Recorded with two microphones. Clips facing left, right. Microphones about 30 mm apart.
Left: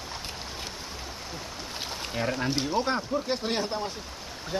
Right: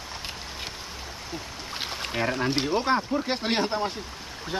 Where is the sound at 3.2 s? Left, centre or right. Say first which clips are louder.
Right 3 dB; right.